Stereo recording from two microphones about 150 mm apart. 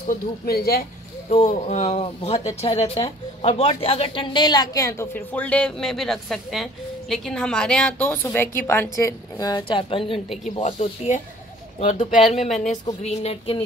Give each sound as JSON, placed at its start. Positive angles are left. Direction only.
{"t": 0.1, "sound": "speech", "side_deg": 90}
{"t": 1.3, "sound": "speech", "side_deg": 45}
{"t": 10.6, "sound": "speech", "side_deg": 50}